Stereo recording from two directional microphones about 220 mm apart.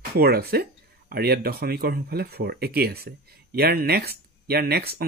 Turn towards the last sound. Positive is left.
turn(degrees=-45)  # may be behind; listen again after turning